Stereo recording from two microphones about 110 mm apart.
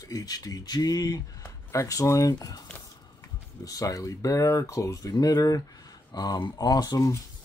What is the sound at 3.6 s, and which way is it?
Speech, 35° left (ahead or behind).